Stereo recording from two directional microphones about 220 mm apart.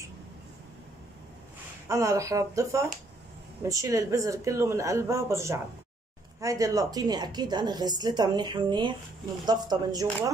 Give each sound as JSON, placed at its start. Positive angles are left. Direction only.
{"t": 1.9, "sound": "a woman's voice", "side_deg": -15}